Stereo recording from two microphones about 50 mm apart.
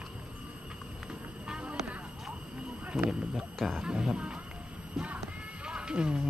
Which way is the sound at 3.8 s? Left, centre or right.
Centre.